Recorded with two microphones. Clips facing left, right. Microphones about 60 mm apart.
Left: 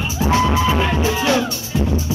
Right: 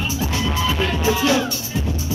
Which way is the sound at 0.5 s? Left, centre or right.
Left.